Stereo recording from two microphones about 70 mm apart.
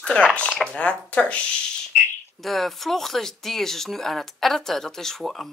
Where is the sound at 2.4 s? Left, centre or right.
Centre.